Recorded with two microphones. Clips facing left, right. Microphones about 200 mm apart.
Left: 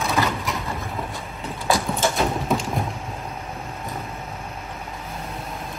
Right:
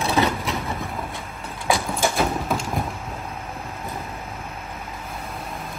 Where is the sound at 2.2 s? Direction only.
Centre (ahead or behind).